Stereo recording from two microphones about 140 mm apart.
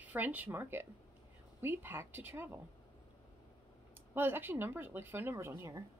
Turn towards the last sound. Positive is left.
turn(degrees=-15)  # may be behind; listen again after turning